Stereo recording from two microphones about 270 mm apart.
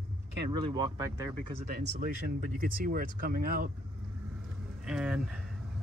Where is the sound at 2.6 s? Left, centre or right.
Right.